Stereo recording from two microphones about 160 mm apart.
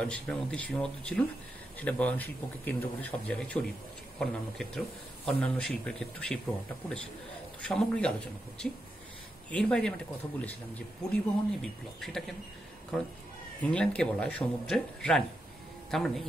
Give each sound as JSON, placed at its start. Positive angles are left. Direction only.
{"t": 0.0, "sound": "speech", "side_deg": 5}
{"t": 7.6, "sound": "speech", "side_deg": 5}